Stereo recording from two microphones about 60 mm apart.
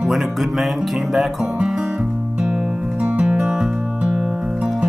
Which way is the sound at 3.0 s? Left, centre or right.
Centre.